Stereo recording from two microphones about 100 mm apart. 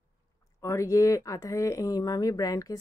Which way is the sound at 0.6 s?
30° left (ahead or behind).